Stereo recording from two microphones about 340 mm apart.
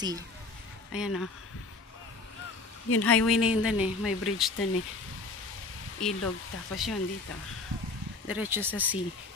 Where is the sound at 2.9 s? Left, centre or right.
Left.